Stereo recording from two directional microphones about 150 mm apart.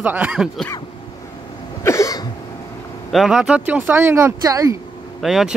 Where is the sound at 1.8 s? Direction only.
20° left (ahead or behind).